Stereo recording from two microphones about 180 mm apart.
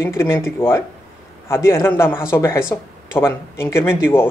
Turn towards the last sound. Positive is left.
turn(degrees=10)  # may be behind; listen again after turning